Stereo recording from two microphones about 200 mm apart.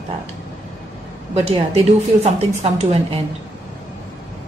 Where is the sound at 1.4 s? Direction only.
30° right (ahead or behind).